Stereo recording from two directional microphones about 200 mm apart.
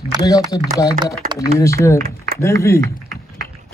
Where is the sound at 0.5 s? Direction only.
20° left (ahead or behind).